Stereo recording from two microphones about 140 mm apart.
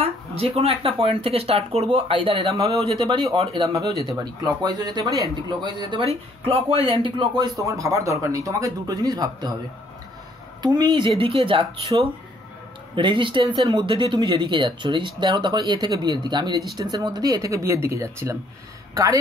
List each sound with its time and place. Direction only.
0.0 s speech: 45° right (ahead or behind); by 9.6 s 30° right (ahead or behind)
10.6 s speech: 30° right (ahead or behind)